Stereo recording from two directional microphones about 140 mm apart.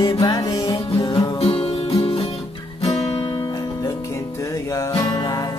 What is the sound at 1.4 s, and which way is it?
Music, 45° left (ahead or behind).